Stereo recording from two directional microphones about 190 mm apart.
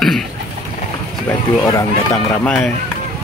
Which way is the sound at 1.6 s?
15° left (ahead or behind).